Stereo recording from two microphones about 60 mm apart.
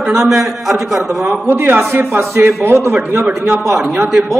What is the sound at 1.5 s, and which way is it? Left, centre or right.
A woman's voice, right.